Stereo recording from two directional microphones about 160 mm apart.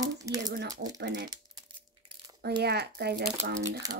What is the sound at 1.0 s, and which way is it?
Speech, 90° right.